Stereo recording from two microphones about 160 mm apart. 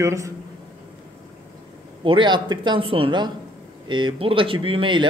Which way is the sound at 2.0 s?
30° right (ahead or behind).